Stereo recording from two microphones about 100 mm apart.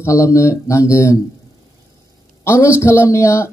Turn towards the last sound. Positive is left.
turn(degrees=25)  # may be behind; listen again after turning